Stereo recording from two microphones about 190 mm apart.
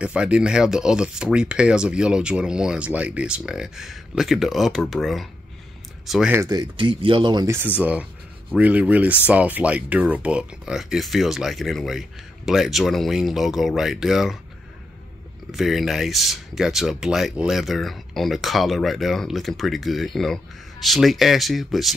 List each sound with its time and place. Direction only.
0.0 s speech: 5° right (ahead or behind)
6.4 s speech: 20° right (ahead or behind)
7.8 s speech: 5° right (ahead or behind)
15.5 s speech: centre (ahead or behind)